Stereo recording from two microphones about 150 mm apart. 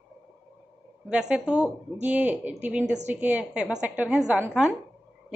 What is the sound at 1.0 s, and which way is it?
A woman's voice, 5° right (ahead or behind).